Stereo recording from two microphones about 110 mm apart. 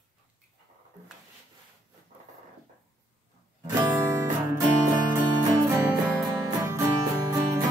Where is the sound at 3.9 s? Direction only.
30° right (ahead or behind).